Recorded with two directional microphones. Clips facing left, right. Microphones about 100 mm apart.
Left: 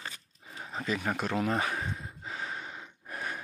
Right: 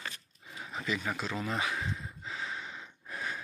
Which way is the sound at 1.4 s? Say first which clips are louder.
Left 3 dB; 45° left (ahead or behind).